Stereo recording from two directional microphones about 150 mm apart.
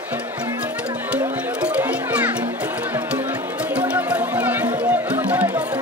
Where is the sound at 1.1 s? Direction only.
10° right (ahead or behind).